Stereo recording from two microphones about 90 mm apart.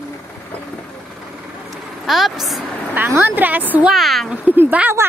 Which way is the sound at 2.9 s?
20° right (ahead or behind).